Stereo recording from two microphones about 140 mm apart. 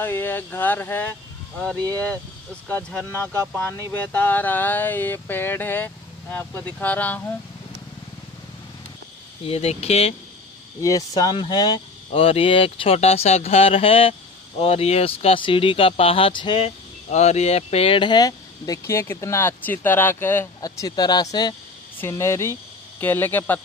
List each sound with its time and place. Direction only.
0.0 s speech: 15° left (ahead or behind)
9.4 s speech: 45° left (ahead or behind)
10.8 s speech: 25° left (ahead or behind)
12.2 s speech: 40° left (ahead or behind)
17.1 s speech: 50° left (ahead or behind); by 20.4 s 15° left (ahead or behind)
20.6 s speech: 25° left (ahead or behind)